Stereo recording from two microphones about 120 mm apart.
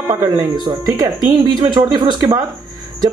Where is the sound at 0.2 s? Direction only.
35° right (ahead or behind).